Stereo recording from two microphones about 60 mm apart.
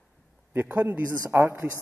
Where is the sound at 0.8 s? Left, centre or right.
Right.